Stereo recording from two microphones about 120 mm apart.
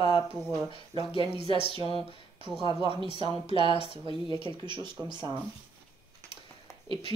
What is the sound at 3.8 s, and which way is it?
Speech, 45° right (ahead or behind).